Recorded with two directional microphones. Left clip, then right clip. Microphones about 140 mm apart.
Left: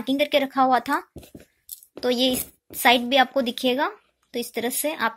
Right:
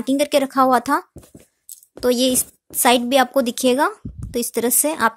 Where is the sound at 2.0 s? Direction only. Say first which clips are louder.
Right 4 dB; 55° right (ahead or behind).